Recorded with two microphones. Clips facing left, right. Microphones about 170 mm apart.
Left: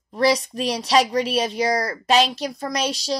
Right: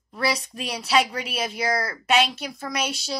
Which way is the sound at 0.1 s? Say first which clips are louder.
Left 7 dB; 35° left (ahead or behind).